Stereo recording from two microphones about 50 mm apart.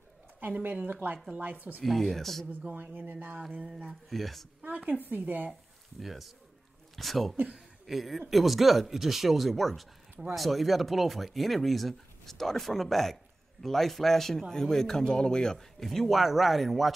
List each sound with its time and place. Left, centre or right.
0.4 s speech: right
1.8 s speech: centre
2.7 s speech: right
4.1 s speech: centre
4.6 s speech: right
5.5 s a man's voice: centre